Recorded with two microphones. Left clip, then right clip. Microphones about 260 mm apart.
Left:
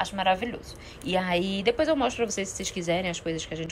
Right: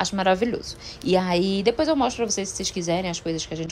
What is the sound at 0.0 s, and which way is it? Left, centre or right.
A woman's voice, right.